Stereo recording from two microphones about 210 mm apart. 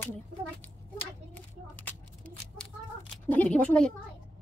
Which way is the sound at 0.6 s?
5° left (ahead or behind).